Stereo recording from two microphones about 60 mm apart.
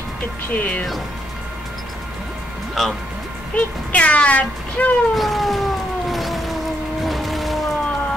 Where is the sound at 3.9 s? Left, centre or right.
Left.